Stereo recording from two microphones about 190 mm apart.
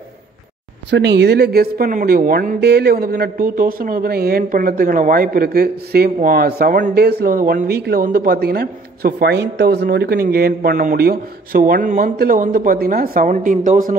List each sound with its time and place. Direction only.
0.8 s speech: 65° right (ahead or behind); by 13.9 s 45° right (ahead or behind)